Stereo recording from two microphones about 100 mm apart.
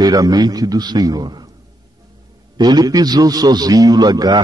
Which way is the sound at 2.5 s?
45° right (ahead or behind).